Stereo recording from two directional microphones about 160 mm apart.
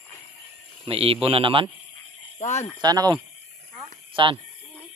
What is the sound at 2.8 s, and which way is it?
Speech, 25° right (ahead or behind).